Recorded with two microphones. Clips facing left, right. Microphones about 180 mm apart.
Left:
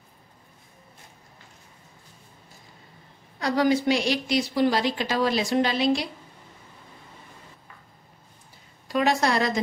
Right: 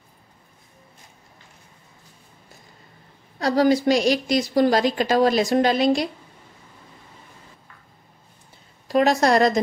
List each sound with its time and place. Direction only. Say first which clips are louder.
3.3 s a woman's voice: right 4 dB; 35° right (ahead or behind)
8.8 s a woman's voice: right 5 dB; 40° right (ahead or behind)